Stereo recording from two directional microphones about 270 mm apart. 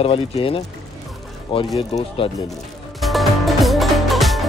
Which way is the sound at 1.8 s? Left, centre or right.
Left.